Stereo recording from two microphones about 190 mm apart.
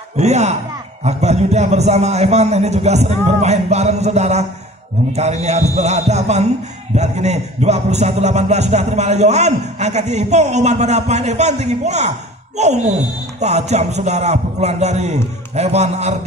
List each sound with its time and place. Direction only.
0.2 s a man's voice: 35° right (ahead or behind)